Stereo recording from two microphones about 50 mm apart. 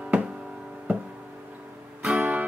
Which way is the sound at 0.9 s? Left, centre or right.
Right.